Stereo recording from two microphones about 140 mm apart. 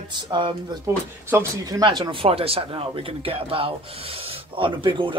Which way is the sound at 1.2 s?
20° right (ahead or behind).